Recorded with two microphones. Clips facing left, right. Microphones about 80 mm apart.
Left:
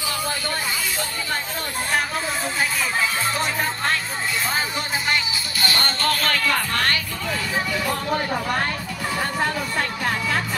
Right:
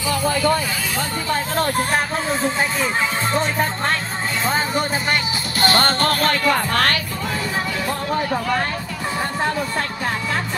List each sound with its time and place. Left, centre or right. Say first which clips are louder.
5.6 s music: right 7 dB; right
6.2 s music: right 4 dB; right
6.7 s speech: right 4 dB; right